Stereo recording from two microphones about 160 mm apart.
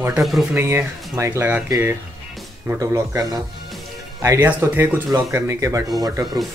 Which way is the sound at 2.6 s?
20° right (ahead or behind).